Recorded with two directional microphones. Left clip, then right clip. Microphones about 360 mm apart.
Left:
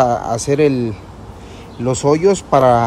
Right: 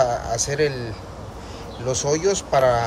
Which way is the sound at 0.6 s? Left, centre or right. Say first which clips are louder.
Left 8 dB; centre.